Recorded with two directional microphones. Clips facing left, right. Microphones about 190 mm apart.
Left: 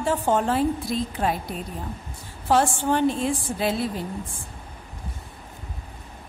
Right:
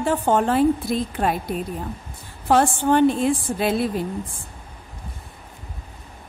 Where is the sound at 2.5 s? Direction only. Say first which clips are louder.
Right 3 dB; 55° right (ahead or behind).